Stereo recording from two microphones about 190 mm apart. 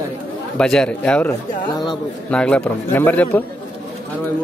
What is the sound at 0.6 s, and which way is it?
Speech, 5° left (ahead or behind).